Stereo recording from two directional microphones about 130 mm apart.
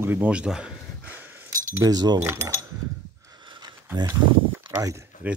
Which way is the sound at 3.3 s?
35° right (ahead or behind).